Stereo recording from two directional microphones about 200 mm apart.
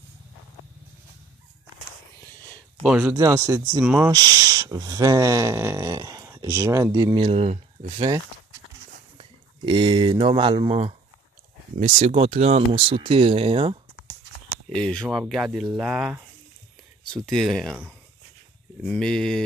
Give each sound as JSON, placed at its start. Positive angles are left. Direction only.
{"t": 2.8, "sound": "speech", "side_deg": -5}
{"t": 7.2, "sound": "speech", "side_deg": -30}
{"t": 9.2, "sound": "speech", "side_deg": -25}
{"t": 14.7, "sound": "speech", "side_deg": 5}